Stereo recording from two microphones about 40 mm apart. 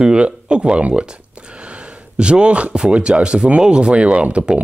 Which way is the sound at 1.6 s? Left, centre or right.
Right.